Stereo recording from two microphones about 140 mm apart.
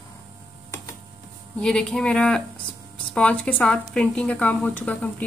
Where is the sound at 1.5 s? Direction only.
5° left (ahead or behind).